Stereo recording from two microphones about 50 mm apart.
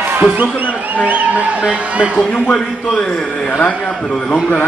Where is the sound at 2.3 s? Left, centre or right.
Left.